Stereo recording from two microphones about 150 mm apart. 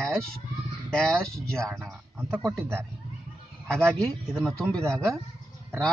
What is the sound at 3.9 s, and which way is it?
Speech, 5° left (ahead or behind).